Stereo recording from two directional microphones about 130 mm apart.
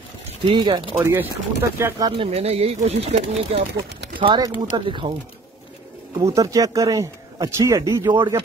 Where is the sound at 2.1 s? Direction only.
45° right (ahead or behind).